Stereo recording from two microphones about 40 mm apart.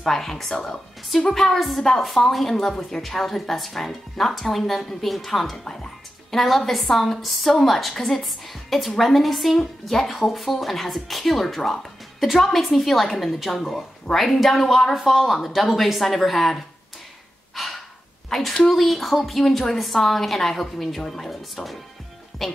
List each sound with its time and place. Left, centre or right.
0.0 s a woman's voice: centre
17.6 s breathing: centre
18.3 s a woman's voice: centre